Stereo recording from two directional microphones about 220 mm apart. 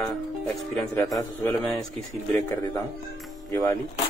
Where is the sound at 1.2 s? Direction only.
15° left (ahead or behind).